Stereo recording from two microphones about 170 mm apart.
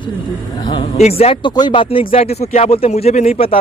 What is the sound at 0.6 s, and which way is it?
Speech, 35° left (ahead or behind).